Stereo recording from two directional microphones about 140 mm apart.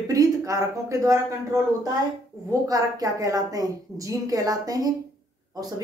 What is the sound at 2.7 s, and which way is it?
A woman's voice, 25° right (ahead or behind).